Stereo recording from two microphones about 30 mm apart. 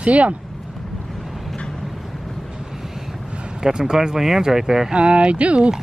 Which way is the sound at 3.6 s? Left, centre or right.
Right.